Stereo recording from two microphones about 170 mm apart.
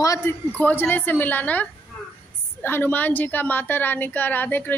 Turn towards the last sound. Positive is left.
turn(degrees=10)  # may be behind; listen again after turning